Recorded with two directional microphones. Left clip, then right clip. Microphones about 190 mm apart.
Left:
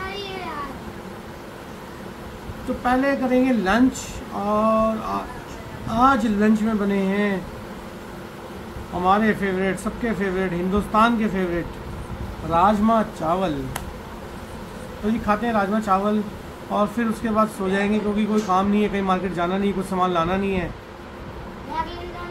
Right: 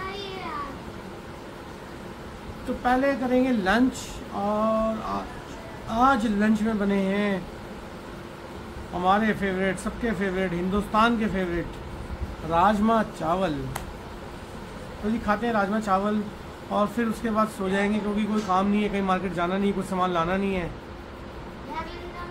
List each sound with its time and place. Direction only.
2.8 s speech: 10° right (ahead or behind)
9.0 s speech: 10° right (ahead or behind)
15.2 s speech: 10° right (ahead or behind)